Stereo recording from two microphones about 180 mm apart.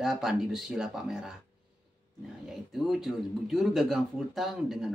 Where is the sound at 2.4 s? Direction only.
Centre (ahead or behind).